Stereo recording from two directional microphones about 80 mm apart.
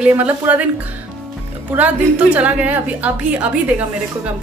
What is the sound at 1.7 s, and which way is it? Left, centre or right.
A woman's voice, centre.